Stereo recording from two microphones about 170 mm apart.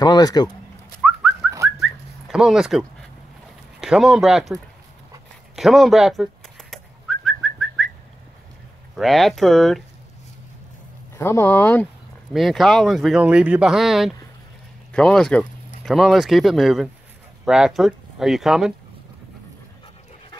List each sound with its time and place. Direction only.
0.0 s a sound: 25° left (ahead or behind)
1.8 s whistling: centre (ahead or behind)
3.8 s speech: centre (ahead or behind)
5.6 s whistling: centre (ahead or behind)
8.9 s speech: centre (ahead or behind)
11.1 s speech: 15° left (ahead or behind); by 18.7 s centre (ahead or behind)